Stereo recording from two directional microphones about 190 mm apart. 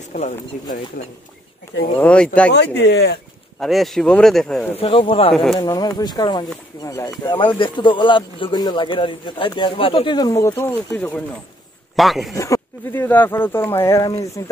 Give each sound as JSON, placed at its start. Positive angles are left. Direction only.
{"t": 0.1, "sound": "speech", "side_deg": 40}
{"t": 2.0, "sound": "speech", "side_deg": 5}
{"t": 2.5, "sound": "speech", "side_deg": 65}
{"t": 3.5, "sound": "speech", "side_deg": 0}
{"t": 4.7, "sound": "speech", "side_deg": 30}
{"t": 5.3, "sound": "speech", "side_deg": 0}
{"t": 5.6, "sound": "speech", "side_deg": 20}
{"t": 12.4, "sound": "speech", "side_deg": 15}